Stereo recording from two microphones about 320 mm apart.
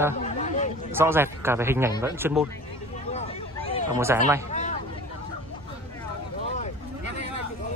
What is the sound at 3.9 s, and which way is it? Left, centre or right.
Speech, centre.